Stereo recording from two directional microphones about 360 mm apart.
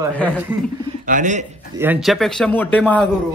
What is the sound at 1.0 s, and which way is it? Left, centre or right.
Speech, right.